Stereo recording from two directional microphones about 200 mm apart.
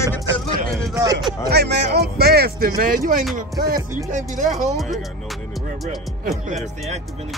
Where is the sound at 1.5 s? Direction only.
55° right (ahead or behind); by 4.7 s 35° right (ahead or behind).